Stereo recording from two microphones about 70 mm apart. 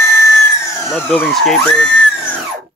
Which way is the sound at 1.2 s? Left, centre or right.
Centre.